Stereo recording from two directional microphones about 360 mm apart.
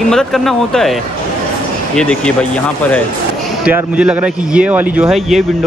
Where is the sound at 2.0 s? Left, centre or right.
Centre.